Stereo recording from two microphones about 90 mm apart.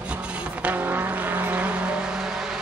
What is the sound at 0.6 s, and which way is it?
Vehicle, 20° right (ahead or behind).